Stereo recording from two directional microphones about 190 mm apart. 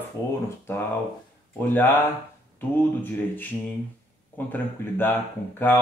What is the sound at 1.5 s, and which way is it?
Speech, 10° left (ahead or behind).